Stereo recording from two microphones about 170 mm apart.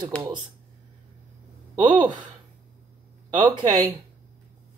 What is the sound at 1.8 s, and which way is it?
Speech, 25° right (ahead or behind).